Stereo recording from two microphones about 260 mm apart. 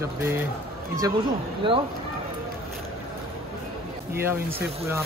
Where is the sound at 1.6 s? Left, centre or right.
Centre.